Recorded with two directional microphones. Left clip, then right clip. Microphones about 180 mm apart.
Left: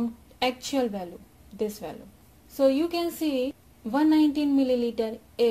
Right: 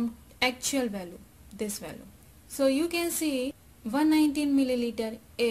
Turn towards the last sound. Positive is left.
turn(degrees=0)  # may be behind; listen again after turning